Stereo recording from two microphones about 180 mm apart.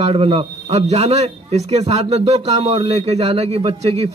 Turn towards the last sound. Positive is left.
turn(degrees=-35)  # may be behind; listen again after turning